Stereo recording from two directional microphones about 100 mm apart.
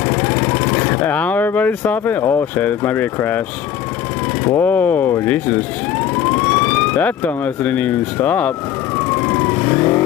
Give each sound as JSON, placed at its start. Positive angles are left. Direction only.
{"t": 0.1, "sound": "speech", "side_deg": 20}
{"t": 4.6, "sound": "speech", "side_deg": 15}
{"t": 9.1, "sound": "vehicle", "side_deg": 20}